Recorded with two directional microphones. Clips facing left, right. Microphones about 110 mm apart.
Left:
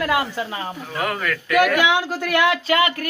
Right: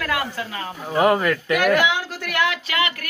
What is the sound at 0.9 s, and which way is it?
Speech, 25° right (ahead or behind).